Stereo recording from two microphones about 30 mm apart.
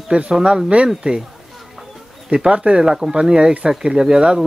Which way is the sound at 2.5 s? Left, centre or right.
Right.